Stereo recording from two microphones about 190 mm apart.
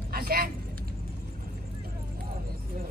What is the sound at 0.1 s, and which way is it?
Vehicle, 50° right (ahead or behind).